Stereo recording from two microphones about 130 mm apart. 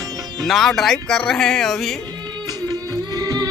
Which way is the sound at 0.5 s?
Centre (ahead or behind).